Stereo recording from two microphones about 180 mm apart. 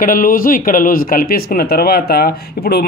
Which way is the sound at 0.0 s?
50° left (ahead or behind).